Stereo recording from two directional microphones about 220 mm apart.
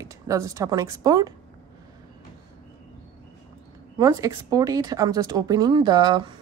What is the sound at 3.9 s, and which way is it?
A woman's voice, 15° right (ahead or behind).